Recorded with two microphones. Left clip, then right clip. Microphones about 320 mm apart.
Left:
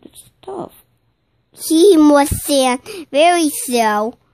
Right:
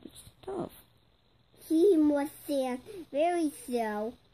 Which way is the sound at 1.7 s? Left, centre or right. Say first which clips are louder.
Left 15 dB; left.